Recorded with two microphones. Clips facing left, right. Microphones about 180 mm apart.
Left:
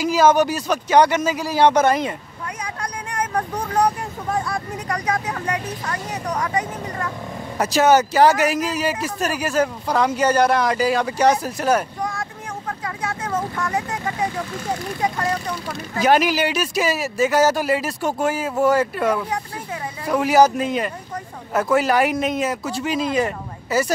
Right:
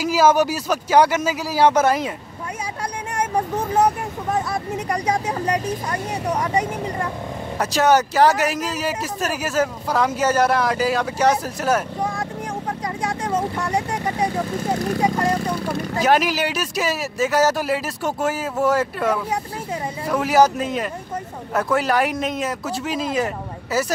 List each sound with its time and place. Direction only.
0.0 s speech: 5° right (ahead or behind)
3.8 s speech: 5° right (ahead or behind)
4.7 s speech: 30° right (ahead or behind)
5.9 s speech: 10° right (ahead or behind)
7.5 s speech: centre (ahead or behind)
12.0 s vehicle: 35° right (ahead or behind)
13.7 s speech: 30° right (ahead or behind)
16.0 s speech: centre (ahead or behind)